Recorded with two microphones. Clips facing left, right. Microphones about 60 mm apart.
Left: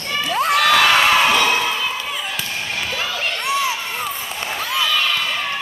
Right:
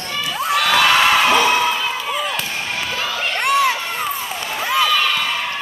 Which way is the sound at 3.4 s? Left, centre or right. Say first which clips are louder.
Right 5 dB; right.